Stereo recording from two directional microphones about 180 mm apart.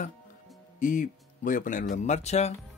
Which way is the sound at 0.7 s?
45° left (ahead or behind).